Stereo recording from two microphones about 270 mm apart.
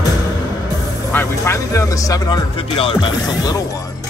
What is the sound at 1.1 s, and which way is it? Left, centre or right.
Speech, centre.